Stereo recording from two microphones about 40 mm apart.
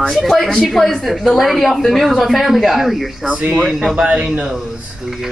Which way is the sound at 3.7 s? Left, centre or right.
Centre.